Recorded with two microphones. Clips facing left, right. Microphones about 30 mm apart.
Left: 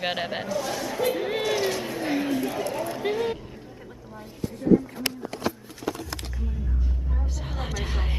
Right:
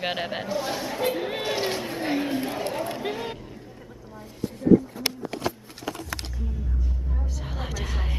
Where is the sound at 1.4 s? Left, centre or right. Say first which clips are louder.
Left 2 dB; right.